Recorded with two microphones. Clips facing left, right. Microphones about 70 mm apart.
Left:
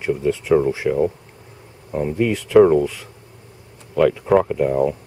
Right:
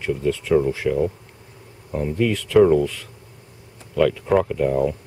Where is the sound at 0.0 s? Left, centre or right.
Centre.